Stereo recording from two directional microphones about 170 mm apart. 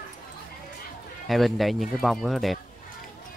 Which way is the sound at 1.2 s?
Centre (ahead or behind).